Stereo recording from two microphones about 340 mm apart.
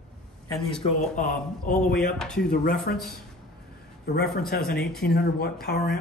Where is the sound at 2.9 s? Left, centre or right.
Left.